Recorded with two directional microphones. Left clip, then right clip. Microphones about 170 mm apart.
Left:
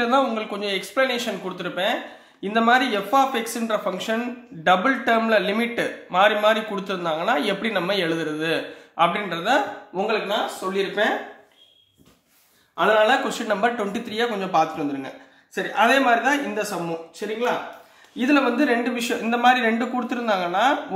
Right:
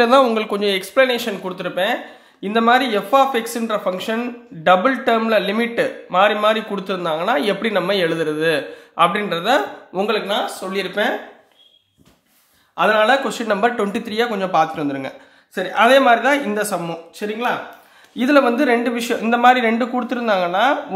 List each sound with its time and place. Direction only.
0.0 s speech: 55° right (ahead or behind)
9.9 s speech: 60° right (ahead or behind)
11.0 s a man's voice: 50° right (ahead or behind)
12.7 s a man's voice: 55° right (ahead or behind)
13.1 s speech: 30° right (ahead or behind)
17.2 s a man's voice: 55° right (ahead or behind); by 20.7 s 25° right (ahead or behind)